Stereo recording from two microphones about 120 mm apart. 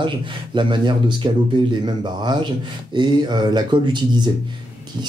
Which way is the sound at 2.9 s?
40° right (ahead or behind).